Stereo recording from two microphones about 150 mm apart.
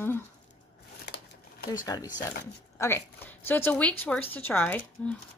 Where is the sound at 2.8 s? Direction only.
15° left (ahead or behind).